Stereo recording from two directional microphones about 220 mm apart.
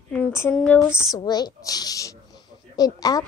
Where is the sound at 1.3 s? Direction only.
20° left (ahead or behind).